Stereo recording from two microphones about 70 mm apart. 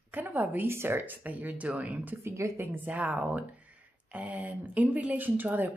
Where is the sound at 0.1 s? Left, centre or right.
Right.